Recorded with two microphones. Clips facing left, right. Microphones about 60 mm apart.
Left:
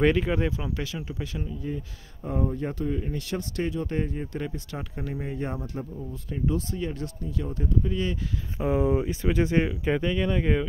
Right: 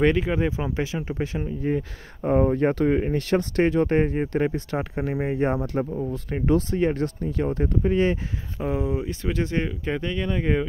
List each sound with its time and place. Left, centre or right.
0.0 s speech: centre
0.5 s speech: right
1.6 s speech: right
3.1 s speech: right
5.7 s speech: right
8.5 s speech: centre
8.8 s speech: centre